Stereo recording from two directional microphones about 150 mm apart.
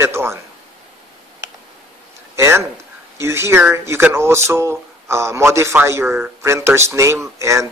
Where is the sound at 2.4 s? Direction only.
20° right (ahead or behind).